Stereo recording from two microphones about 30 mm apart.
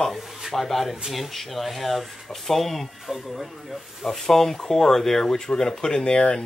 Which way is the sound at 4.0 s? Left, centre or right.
Centre.